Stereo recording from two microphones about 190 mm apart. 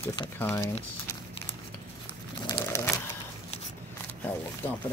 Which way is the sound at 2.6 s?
15° left (ahead or behind).